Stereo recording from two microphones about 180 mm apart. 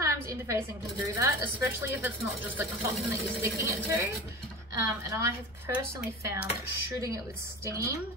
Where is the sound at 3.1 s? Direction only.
15° right (ahead or behind).